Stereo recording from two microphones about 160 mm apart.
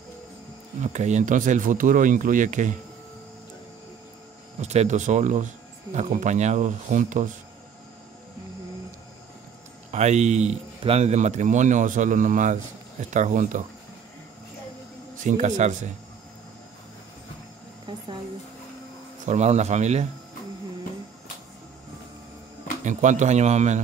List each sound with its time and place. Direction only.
0.8 s speech: 45° right (ahead or behind)
4.6 s speech: 45° right (ahead or behind)
9.8 s speech: 45° right (ahead or behind)
15.1 s speech: 50° right (ahead or behind)
17.8 s a sound: 30° right (ahead or behind)
19.2 s speech: 45° right (ahead or behind)
22.8 s speech: 50° right (ahead or behind)